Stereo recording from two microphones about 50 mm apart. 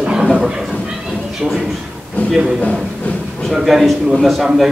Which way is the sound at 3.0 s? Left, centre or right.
Left.